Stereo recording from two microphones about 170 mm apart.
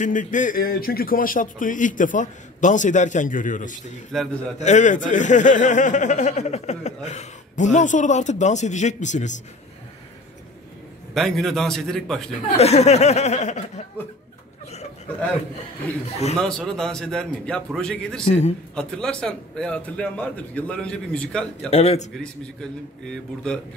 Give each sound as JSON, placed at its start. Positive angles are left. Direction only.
{"t": 0.0, "sound": "speech", "side_deg": 50}
{"t": 4.1, "sound": "a man's voice", "side_deg": 0}
{"t": 4.6, "sound": "speech", "side_deg": 45}
{"t": 11.1, "sound": "a man's voice", "side_deg": 0}
{"t": 12.5, "sound": "speech", "side_deg": 40}
{"t": 16.3, "sound": "a man's voice", "side_deg": 5}
{"t": 18.2, "sound": "speech", "side_deg": 40}
{"t": 18.8, "sound": "a man's voice", "side_deg": 5}
{"t": 21.6, "sound": "speech", "side_deg": 35}
{"t": 22.2, "sound": "a man's voice", "side_deg": 5}